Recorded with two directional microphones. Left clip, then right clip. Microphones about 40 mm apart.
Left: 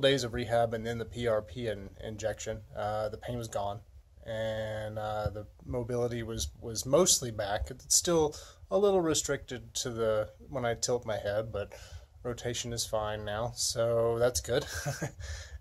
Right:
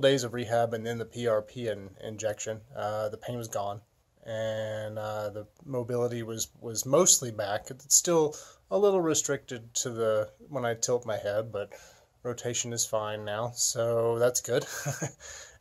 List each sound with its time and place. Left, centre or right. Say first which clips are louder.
0.0 s speech: right 3 dB; right
2.1 s speech: right 3 dB; right
6.3 s speech: right 2 dB; right
8.4 s speech: right 2 dB; right
9.5 s speech: right 2 dB; right
12.4 s speech: right 4 dB; right
12.9 s speech: right 1 dB; right